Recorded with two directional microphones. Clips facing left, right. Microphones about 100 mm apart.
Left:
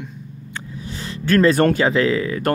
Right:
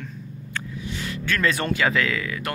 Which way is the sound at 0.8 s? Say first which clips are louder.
Left 2 dB; 35° left (ahead or behind).